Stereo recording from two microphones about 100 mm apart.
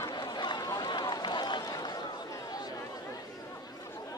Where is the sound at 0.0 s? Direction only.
40° left (ahead or behind).